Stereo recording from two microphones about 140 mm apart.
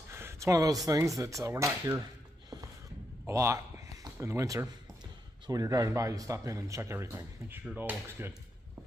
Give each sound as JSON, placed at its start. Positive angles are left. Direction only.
{"t": 0.1, "sound": "a sound", "side_deg": -20}
{"t": 0.8, "sound": "speech", "side_deg": -25}
{"t": 3.3, "sound": "a man's voice", "side_deg": -20}